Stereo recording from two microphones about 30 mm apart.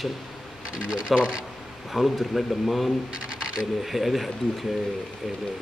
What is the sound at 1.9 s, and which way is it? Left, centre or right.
Speech, centre.